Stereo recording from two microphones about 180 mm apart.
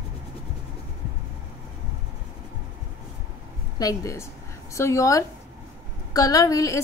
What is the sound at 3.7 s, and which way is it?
A woman's voice, 20° left (ahead or behind).